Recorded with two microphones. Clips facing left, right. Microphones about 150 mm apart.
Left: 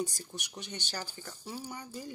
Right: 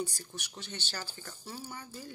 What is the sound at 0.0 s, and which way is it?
Speech, 20° left (ahead or behind).